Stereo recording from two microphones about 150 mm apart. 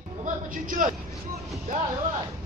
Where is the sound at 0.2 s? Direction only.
65° right (ahead or behind).